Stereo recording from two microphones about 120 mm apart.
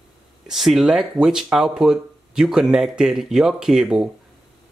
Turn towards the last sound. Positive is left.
turn(degrees=-5)  # may be behind; listen again after turning